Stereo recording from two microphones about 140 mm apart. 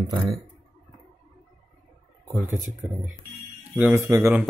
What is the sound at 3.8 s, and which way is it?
Speech, 15° right (ahead or behind).